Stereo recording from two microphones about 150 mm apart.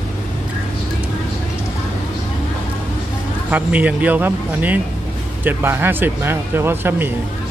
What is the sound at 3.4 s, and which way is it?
Speech, 10° right (ahead or behind).